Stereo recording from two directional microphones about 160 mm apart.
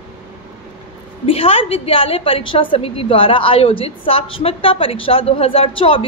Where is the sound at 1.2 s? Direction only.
35° left (ahead or behind).